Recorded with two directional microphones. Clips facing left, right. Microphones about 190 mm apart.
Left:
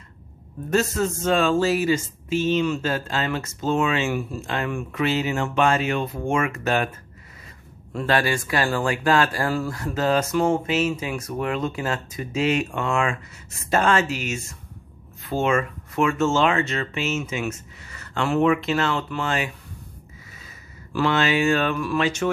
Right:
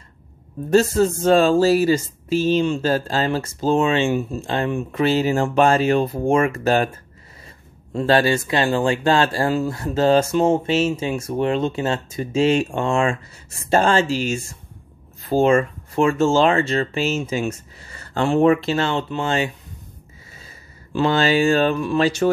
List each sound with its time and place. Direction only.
0.7 s speech: 30° right (ahead or behind)
7.9 s speech: 30° right (ahead or behind)
20.9 s speech: 30° right (ahead or behind)